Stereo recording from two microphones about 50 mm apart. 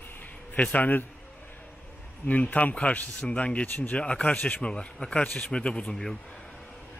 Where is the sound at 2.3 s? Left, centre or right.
Left.